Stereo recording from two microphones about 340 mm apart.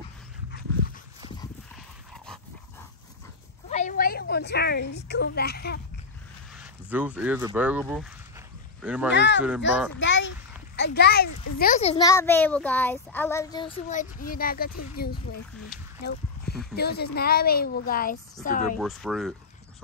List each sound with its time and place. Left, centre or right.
3.7 s speech: left
6.6 s speech: centre
9.1 s a child's voice: left
16.0 s a sound: left
16.7 s a woman's voice: left
18.8 s speech: centre